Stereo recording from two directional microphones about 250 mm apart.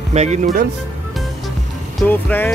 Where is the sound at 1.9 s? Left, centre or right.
Centre.